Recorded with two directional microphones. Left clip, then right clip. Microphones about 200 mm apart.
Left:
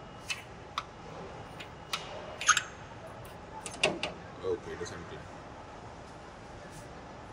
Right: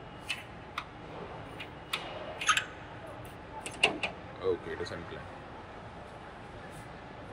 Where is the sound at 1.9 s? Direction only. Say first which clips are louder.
Right 1 dB; centre (ahead or behind).